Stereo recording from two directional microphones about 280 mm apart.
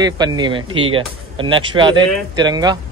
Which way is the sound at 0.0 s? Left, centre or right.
Centre.